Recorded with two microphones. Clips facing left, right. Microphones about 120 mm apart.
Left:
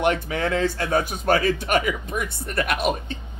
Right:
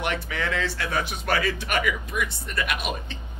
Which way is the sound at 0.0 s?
45° left (ahead or behind).